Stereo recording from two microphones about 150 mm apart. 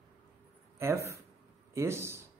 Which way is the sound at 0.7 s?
20° right (ahead or behind).